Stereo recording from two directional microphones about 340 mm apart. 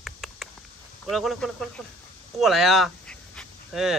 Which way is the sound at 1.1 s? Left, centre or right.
Centre.